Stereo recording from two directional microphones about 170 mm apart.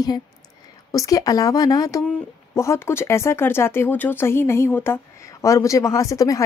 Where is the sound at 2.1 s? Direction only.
5° left (ahead or behind).